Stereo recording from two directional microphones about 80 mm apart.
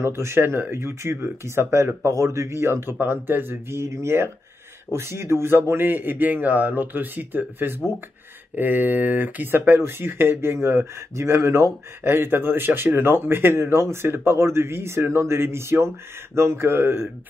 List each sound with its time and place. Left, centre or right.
0.0 s a man's voice: right